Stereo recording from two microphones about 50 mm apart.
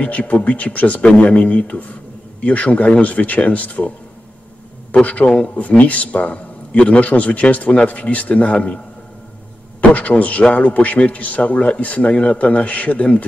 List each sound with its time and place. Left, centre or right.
0.0 s a man's voice: left
5.0 s a man's voice: left
9.8 s a man's voice: left